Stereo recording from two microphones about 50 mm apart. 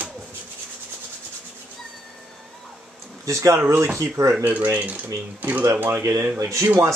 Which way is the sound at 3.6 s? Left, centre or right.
Right.